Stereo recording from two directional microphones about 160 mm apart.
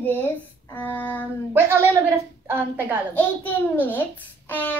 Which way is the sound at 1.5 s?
15° right (ahead or behind).